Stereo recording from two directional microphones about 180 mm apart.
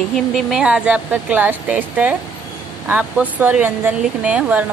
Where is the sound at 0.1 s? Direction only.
Centre (ahead or behind).